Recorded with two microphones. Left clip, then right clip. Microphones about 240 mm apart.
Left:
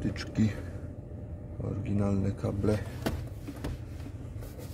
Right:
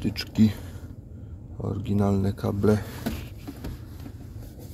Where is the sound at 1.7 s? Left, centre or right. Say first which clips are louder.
Right 6 dB; centre.